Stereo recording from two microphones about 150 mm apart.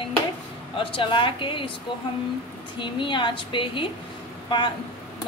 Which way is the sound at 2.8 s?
35° left (ahead or behind).